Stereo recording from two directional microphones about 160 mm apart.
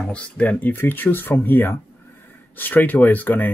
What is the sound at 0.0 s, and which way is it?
Speech, 10° left (ahead or behind).